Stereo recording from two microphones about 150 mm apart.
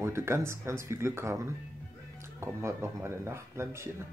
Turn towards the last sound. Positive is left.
turn(degrees=-20)  # may be behind; listen again after turning